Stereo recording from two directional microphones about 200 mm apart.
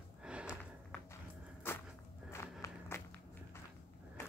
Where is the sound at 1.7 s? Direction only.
10° left (ahead or behind).